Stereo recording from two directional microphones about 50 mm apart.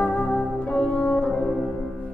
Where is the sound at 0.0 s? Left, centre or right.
Left.